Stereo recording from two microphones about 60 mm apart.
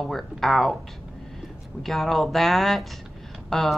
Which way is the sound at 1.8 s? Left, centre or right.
Centre.